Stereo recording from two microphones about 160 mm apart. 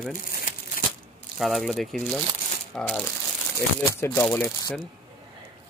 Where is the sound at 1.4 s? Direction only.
Centre (ahead or behind).